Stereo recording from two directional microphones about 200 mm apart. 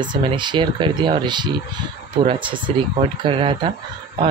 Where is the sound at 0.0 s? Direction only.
25° right (ahead or behind).